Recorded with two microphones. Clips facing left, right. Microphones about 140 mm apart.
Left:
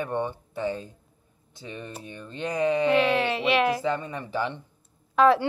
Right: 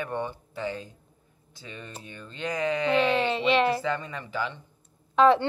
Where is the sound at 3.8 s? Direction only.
20° left (ahead or behind).